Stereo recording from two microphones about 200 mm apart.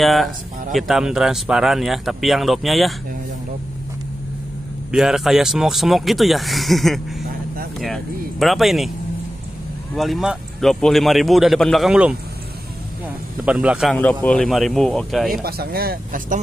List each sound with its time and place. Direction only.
0.0 s speech: centre (ahead or behind)
4.9 s speech: centre (ahead or behind)
9.9 s speech: centre (ahead or behind)
13.5 s speech: 5° right (ahead or behind)
15.4 s speech: 50° right (ahead or behind)